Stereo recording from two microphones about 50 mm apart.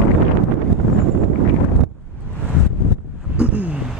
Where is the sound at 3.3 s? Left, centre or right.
Right.